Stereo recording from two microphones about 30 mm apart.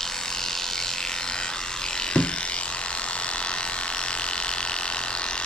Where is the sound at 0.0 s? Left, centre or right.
Centre.